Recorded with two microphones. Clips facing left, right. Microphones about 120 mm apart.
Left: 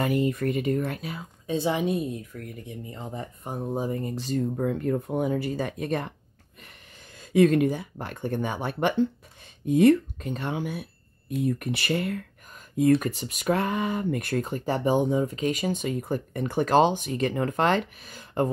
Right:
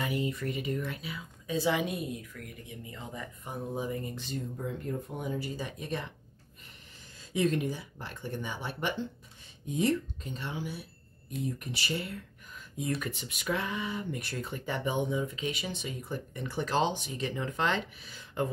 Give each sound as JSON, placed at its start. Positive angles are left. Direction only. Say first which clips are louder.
{"t": 0.0, "sound": "speech", "louder": "left 8 dB", "side_deg": 50}
{"t": 1.5, "sound": "speech", "louder": "left 4 dB", "side_deg": 25}
{"t": 4.4, "sound": "speech", "louder": "left 12 dB", "side_deg": 70}
{"t": 7.2, "sound": "speech", "louder": "left 10 dB", "side_deg": 60}
{"t": 13.1, "sound": "speech", "louder": "left 8 dB", "side_deg": 40}